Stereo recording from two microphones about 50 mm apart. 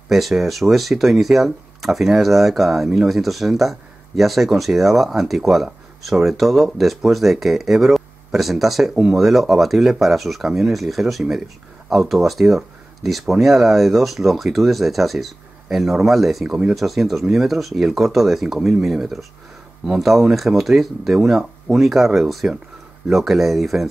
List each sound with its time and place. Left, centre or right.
0.1 s speech: centre
16.4 s speech: centre
16.7 s speech: centre